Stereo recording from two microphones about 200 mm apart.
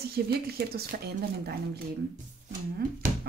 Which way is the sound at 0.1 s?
50° right (ahead or behind).